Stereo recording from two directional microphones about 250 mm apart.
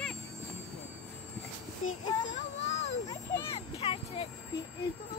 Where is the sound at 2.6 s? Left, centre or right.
Left.